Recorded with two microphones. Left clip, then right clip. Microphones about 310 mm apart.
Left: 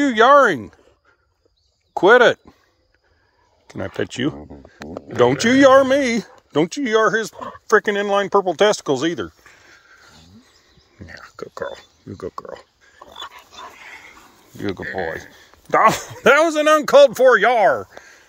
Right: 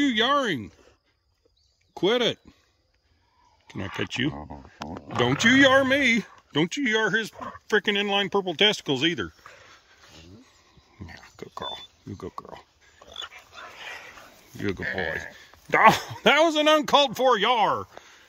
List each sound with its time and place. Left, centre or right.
0.0 s speech: centre
2.0 s speech: centre
3.6 s speech: centre
7.3 s speech: left
7.6 s speech: centre
11.0 s speech: centre
13.0 s dog: centre
13.7 s dog: right
14.6 s speech: centre